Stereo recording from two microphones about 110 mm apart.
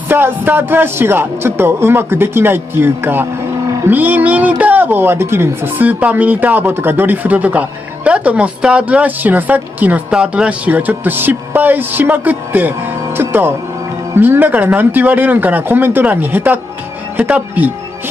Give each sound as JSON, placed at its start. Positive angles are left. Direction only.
{"t": 0.1, "sound": "speech", "side_deg": -20}